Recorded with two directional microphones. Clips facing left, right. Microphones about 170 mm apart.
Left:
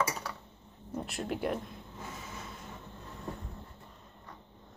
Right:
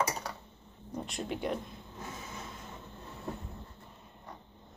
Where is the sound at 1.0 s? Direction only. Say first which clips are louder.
Left 1 dB; 5° left (ahead or behind).